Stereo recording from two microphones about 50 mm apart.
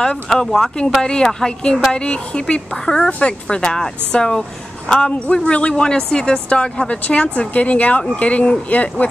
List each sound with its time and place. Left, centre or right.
0.3 s speech: centre; by 9.0 s left